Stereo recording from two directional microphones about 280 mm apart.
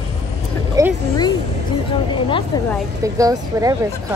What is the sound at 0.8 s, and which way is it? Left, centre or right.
Speech, centre.